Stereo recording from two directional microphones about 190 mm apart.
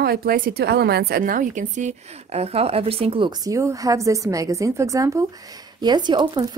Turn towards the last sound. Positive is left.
turn(degrees=-25)  # may be behind; listen again after turning